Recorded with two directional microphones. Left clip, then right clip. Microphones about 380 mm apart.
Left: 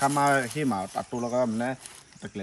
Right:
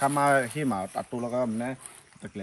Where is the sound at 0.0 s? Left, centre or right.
Centre.